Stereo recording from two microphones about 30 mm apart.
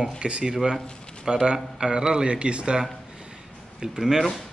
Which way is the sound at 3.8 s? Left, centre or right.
Centre.